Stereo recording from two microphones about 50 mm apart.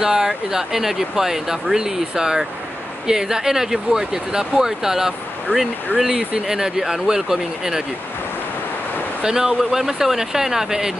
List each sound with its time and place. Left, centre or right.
0.0 s speech: centre
9.2 s speech: centre